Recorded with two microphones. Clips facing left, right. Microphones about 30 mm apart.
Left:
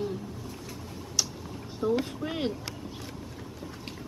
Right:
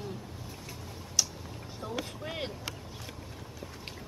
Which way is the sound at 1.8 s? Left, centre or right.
Left.